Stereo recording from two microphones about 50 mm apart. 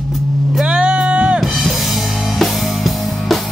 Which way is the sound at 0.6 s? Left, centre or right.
Right.